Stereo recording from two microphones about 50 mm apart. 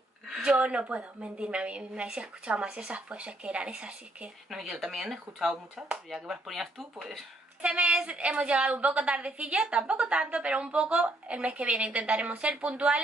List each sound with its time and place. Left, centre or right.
0.6 s a woman's voice: right
4.5 s speech: centre
7.6 s a woman's voice: right